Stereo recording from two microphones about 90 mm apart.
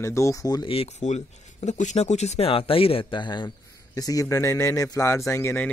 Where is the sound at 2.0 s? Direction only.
70° left (ahead or behind).